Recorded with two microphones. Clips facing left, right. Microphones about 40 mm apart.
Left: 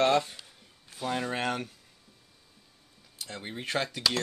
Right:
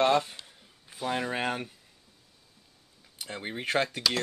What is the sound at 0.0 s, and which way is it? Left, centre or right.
Speech, right.